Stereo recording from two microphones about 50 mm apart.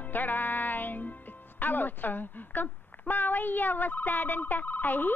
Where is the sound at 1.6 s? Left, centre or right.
Left.